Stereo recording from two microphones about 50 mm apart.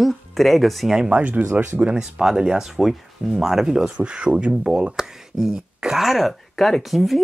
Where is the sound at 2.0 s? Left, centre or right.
Centre.